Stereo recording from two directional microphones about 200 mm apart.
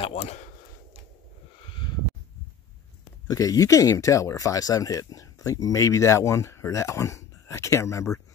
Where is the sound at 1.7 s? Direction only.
25° left (ahead or behind).